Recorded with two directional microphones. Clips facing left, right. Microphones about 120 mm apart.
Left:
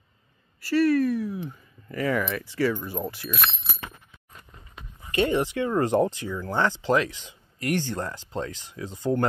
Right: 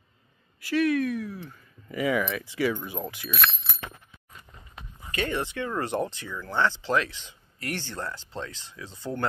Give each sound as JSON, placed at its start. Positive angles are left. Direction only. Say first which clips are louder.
{"t": 0.7, "sound": "speech", "louder": "left 3 dB", "side_deg": 0}
{"t": 5.1, "sound": "speech", "louder": "left 6 dB", "side_deg": 25}
{"t": 5.8, "sound": "speech", "louder": "left 8 dB", "side_deg": 40}